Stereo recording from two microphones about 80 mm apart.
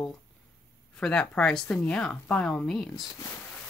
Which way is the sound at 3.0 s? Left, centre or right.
Left.